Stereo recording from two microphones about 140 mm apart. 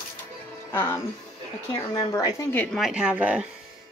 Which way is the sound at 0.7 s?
15° left (ahead or behind).